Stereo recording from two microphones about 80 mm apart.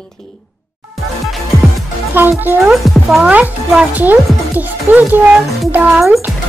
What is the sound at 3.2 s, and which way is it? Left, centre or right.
Speech, centre.